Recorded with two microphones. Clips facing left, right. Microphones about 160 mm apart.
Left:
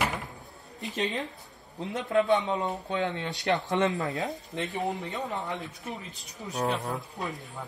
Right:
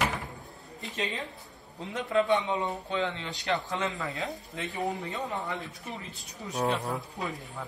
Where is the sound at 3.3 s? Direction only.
20° left (ahead or behind).